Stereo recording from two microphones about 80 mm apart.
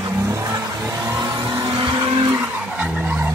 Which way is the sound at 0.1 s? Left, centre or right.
Right.